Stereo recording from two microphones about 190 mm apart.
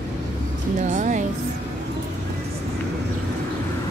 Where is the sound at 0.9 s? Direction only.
40° right (ahead or behind).